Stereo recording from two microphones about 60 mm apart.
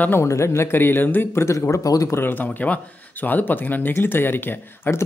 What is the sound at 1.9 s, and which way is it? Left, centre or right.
Speech, left.